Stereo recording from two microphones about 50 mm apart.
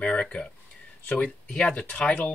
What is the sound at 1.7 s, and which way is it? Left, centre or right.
Speech, left.